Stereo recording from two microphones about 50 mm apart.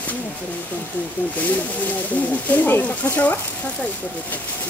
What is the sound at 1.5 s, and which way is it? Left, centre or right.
Speech, left.